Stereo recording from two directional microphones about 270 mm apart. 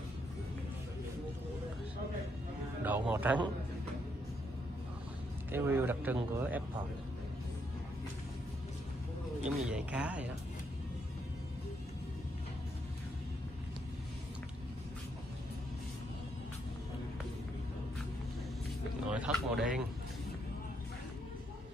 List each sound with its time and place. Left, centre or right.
2.8 s speech: centre
5.5 s speech: centre
9.7 s speech: centre
19.0 s a sound: centre